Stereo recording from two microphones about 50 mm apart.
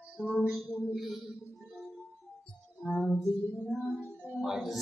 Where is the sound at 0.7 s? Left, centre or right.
Left.